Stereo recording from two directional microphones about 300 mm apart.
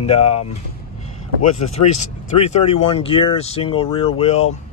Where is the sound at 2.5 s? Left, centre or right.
Centre.